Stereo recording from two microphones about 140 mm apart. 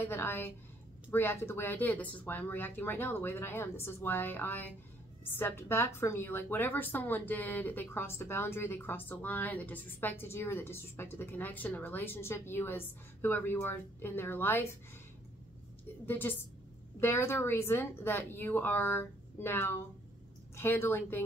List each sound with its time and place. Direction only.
0.0 s a woman's voice: 15° left (ahead or behind)
16.1 s a woman's voice: 15° left (ahead or behind)